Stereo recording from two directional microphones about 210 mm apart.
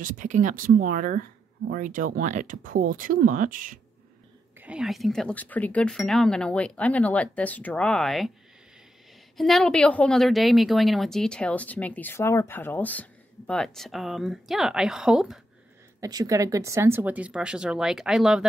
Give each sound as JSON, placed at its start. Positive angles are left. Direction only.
{"t": 0.0, "sound": "speech", "side_deg": -35}
{"t": 4.6, "sound": "a woman's voice", "side_deg": -5}
{"t": 9.4, "sound": "a woman's voice", "side_deg": 0}
{"t": 16.0, "sound": "a woman's voice", "side_deg": -15}